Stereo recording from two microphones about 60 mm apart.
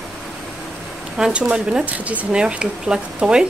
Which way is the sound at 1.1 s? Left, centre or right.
Centre.